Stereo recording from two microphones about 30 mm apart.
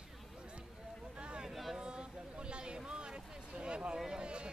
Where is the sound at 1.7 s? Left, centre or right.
Right.